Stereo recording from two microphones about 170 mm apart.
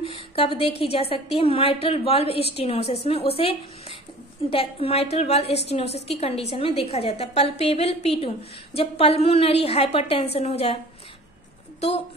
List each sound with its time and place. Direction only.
0.0 s a woman's voice: 30° left (ahead or behind)